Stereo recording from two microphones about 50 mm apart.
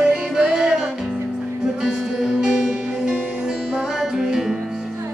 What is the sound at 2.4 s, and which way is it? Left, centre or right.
Music, centre.